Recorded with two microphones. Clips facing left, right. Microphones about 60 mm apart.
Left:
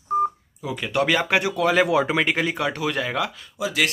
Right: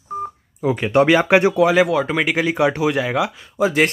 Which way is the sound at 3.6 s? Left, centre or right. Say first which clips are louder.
Right 7 dB; right.